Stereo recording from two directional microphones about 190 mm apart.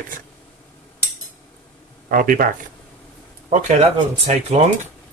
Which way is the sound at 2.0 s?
45° right (ahead or behind).